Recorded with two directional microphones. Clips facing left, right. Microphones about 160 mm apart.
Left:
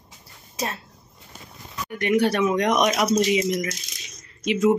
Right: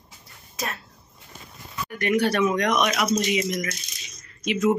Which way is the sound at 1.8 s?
20° left (ahead or behind).